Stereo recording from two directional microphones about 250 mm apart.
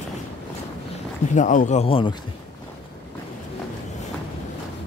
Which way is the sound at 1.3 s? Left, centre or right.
Left.